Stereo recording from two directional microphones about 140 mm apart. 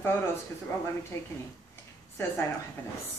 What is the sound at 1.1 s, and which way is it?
Speech, 20° left (ahead or behind).